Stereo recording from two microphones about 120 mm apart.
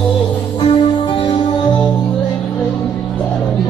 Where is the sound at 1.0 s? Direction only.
40° left (ahead or behind).